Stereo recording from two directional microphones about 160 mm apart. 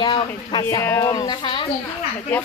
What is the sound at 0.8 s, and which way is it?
Speech, 20° left (ahead or behind).